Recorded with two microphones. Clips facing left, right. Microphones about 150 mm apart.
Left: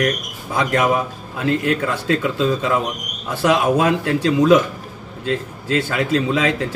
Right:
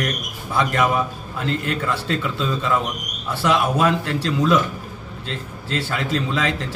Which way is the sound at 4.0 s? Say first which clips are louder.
Left 5 dB; 55° left (ahead or behind).